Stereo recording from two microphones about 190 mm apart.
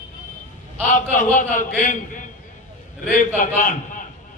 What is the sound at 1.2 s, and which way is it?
A man's voice, 45° left (ahead or behind).